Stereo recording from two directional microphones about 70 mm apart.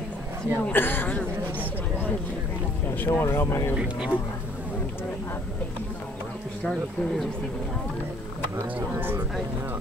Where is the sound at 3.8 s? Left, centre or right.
Centre.